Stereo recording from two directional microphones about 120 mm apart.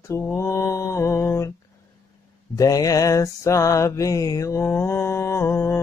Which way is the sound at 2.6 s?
30° left (ahead or behind).